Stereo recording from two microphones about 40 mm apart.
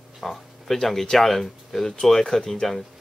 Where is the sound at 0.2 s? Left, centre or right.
Centre.